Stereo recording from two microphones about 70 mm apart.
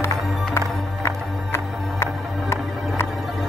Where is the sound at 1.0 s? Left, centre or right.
Left.